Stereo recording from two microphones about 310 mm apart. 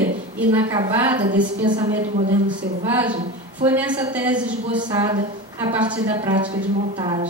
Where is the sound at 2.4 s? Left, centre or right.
Centre.